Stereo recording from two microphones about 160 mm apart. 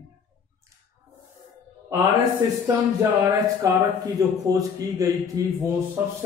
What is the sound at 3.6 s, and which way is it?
Speech, 20° right (ahead or behind).